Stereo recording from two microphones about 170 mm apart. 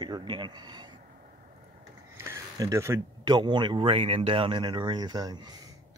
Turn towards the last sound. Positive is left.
turn(degrees=-25)  # may be behind; listen again after turning